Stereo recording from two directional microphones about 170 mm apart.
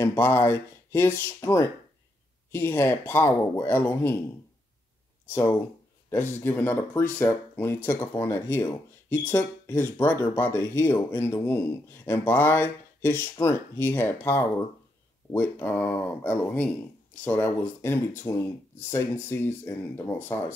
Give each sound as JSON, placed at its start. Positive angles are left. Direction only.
{"t": 0.0, "sound": "speech", "side_deg": 15}
{"t": 6.3, "sound": "speech", "side_deg": 10}